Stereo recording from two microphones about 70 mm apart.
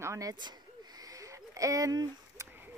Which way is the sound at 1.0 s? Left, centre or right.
Right.